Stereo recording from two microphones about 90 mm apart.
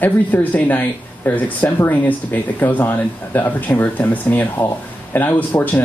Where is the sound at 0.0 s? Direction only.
20° left (ahead or behind).